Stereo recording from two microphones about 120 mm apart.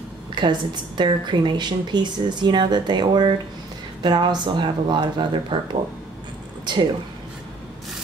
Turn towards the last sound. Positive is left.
turn(degrees=-40)  # may be behind; listen again after turning